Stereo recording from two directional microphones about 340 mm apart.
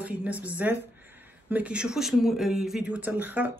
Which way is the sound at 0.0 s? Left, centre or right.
Centre.